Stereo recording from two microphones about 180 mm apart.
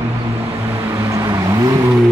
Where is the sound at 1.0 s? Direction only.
15° right (ahead or behind).